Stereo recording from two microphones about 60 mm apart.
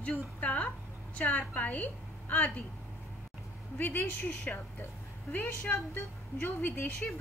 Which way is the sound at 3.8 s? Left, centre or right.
Left.